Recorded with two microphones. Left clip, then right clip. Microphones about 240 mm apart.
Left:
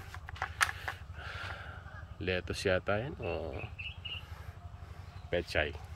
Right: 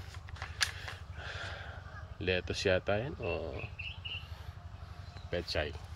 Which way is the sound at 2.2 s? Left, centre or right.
Centre.